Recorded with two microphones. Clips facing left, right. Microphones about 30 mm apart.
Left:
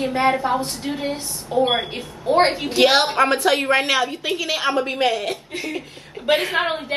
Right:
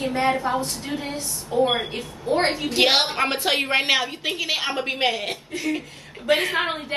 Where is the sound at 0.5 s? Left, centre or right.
Left.